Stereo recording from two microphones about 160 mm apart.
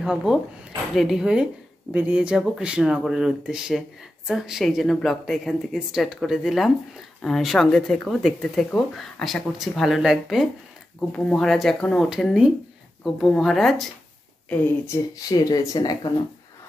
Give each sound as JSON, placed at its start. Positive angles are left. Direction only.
{"t": 0.0, "sound": "speech", "side_deg": -5}
{"t": 15.2, "sound": "speech", "side_deg": 25}